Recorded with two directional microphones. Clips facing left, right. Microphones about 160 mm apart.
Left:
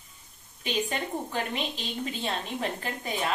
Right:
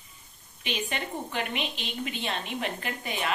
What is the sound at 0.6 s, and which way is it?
A woman's voice, 35° left (ahead or behind).